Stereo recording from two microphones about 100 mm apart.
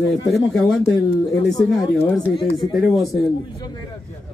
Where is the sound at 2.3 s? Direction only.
60° left (ahead or behind).